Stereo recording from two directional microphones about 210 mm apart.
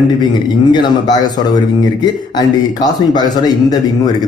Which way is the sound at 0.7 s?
20° left (ahead or behind).